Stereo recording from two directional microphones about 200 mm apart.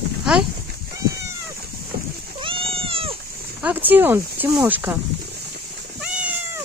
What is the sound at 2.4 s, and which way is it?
Cat, 25° right (ahead or behind).